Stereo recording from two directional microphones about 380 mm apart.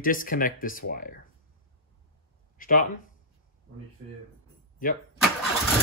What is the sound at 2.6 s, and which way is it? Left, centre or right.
Speech, left.